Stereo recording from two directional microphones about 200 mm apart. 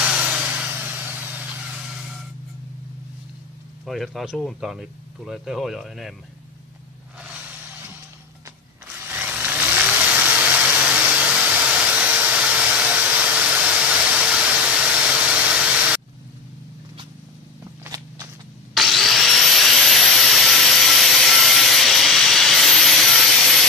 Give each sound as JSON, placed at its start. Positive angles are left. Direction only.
{"t": 0.0, "sound": "vehicle", "side_deg": -5}
{"t": 3.8, "sound": "speech", "side_deg": 0}
{"t": 9.0, "sound": "vehicle", "side_deg": -10}
{"t": 17.8, "sound": "a sound", "side_deg": -15}
{"t": 18.8, "sound": "vacuum cleaner", "side_deg": 0}